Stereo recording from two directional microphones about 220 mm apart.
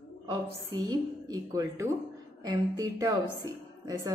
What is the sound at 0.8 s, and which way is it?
A woman's voice, 15° right (ahead or behind).